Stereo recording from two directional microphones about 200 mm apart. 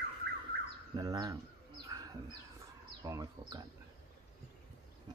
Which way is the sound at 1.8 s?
20° right (ahead or behind).